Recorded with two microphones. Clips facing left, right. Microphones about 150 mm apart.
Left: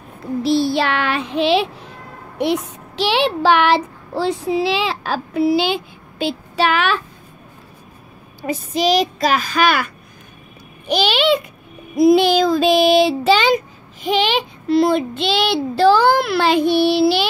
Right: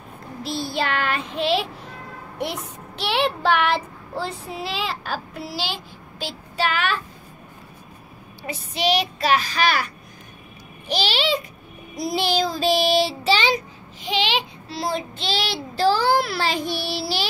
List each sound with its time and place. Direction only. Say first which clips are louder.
0.4 s child singing: left 9 dB; 75° left (ahead or behind)
2.3 s speech: left 10 dB; 80° left
8.4 s a child's voice: left 7 dB; 45° left (ahead or behind)
10.9 s a child's voice: left 7 dB; 55° left (ahead or behind)
11.9 s child singing: left 13 dB; 55° left (ahead or behind)
12.7 s a child's voice: left 6 dB; 55° left (ahead or behind)